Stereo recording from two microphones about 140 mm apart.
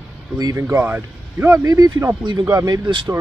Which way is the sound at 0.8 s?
15° right (ahead or behind).